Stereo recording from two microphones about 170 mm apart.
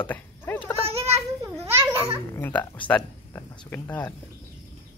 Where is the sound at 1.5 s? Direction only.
15° right (ahead or behind).